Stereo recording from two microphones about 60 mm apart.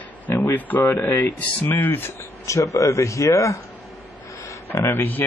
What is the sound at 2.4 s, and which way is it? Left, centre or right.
Speech, left.